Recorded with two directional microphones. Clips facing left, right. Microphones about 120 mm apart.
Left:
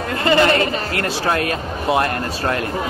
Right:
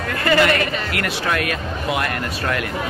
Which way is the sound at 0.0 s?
25° left (ahead or behind).